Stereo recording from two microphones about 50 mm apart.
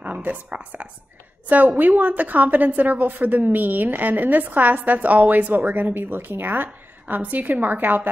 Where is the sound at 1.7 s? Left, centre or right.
Right.